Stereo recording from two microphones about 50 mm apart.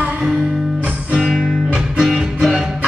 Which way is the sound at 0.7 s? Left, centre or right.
Right.